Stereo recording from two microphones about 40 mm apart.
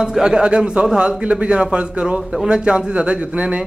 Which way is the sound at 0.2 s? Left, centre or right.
Right.